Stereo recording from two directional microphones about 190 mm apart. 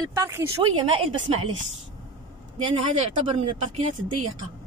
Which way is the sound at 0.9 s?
30° right (ahead or behind).